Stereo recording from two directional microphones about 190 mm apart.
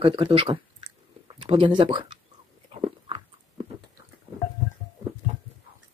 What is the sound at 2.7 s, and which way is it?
Biting, 30° right (ahead or behind).